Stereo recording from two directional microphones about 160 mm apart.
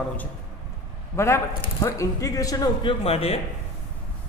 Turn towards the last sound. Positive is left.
turn(degrees=40)  # may be behind; listen again after turning